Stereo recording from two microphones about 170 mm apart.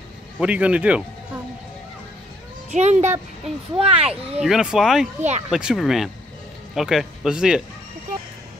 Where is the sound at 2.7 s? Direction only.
45° right (ahead or behind).